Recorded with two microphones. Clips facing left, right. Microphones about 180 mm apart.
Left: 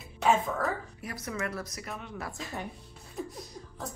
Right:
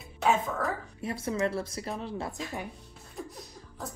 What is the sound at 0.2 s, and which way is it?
Speech, centre (ahead or behind).